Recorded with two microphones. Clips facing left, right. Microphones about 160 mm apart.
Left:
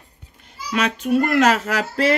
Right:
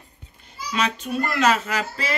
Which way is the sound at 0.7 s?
55° left (ahead or behind).